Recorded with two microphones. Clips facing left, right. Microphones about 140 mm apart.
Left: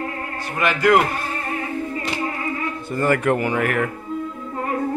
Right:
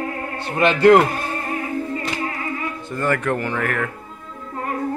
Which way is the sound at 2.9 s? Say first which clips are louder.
Left 3 dB; 10° left (ahead or behind).